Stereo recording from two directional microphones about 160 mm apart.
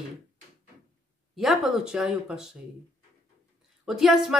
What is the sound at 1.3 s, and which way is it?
Speech, centre (ahead or behind).